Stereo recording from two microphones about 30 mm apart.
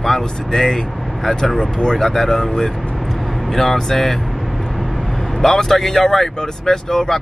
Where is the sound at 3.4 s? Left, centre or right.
Centre.